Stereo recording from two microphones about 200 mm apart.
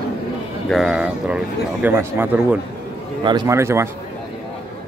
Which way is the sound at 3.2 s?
20° right (ahead or behind).